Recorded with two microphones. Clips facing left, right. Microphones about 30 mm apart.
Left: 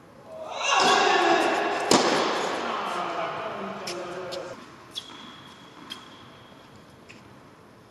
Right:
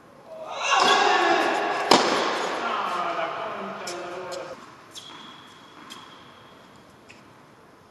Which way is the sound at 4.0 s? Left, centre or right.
Centre.